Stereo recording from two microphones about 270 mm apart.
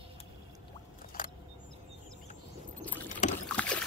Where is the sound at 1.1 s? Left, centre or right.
Left.